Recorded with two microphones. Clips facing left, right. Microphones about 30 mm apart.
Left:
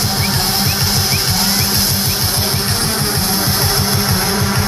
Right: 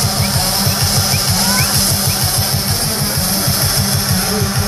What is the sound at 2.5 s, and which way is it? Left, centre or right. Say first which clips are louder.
Music: left 1 dB; left.